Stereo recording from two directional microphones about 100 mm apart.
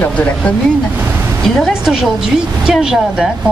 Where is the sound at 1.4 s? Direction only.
Centre (ahead or behind).